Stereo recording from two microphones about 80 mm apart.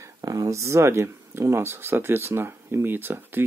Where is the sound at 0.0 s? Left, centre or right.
Right.